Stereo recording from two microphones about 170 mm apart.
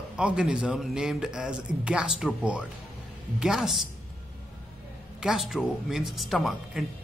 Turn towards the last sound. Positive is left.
turn(degrees=0)  # may be behind; listen again after turning